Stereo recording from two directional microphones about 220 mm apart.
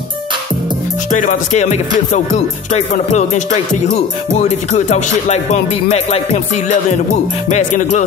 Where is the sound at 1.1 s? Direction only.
35° left (ahead or behind).